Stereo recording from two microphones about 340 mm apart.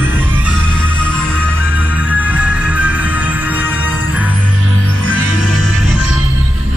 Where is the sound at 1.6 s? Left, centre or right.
Centre.